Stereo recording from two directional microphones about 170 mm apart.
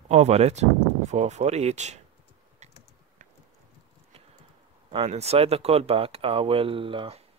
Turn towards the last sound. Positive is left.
turn(degrees=-35)  # may be behind; listen again after turning